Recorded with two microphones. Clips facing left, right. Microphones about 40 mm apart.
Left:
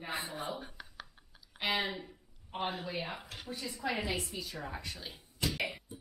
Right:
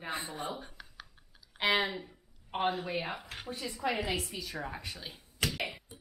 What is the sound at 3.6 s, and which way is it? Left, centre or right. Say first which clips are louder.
Speech: right 2 dB; centre.